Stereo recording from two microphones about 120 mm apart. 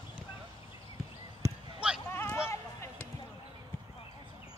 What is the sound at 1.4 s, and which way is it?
Basketball bounce, 25° right (ahead or behind).